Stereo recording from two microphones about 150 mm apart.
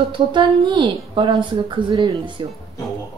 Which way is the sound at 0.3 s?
30° right (ahead or behind).